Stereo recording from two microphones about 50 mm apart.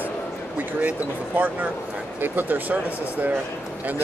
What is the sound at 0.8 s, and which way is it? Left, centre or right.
Speech, right.